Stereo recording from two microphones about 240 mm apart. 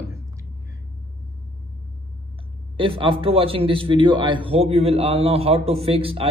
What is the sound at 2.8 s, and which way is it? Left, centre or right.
A man's voice, right.